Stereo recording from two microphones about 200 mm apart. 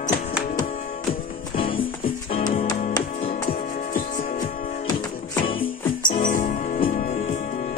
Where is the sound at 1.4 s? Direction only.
25° left (ahead or behind).